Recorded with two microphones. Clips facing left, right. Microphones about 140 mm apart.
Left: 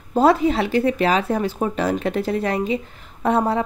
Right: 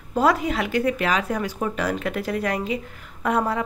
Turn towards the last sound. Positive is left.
turn(degrees=30)  # may be behind; listen again after turning